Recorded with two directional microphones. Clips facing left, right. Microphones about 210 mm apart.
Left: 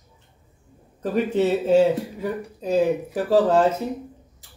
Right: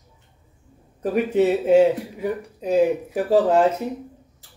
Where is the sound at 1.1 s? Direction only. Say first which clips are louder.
Right 2 dB; 10° right (ahead or behind).